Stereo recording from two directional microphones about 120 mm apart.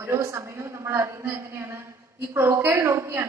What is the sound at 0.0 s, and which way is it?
A woman's voice, 25° right (ahead or behind).